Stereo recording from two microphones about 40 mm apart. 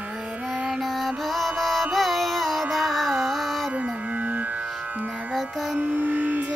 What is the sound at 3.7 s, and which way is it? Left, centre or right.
Music, right.